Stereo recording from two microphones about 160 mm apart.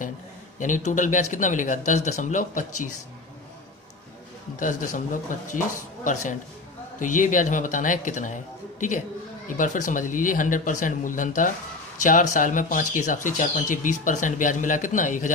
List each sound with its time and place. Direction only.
0.6 s speech: 50° left (ahead or behind)
4.6 s speech: 55° left (ahead or behind)